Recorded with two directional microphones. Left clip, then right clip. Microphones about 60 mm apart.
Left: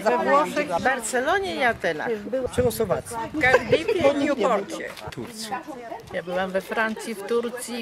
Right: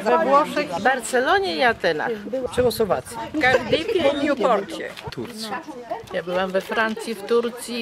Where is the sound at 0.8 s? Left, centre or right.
Centre.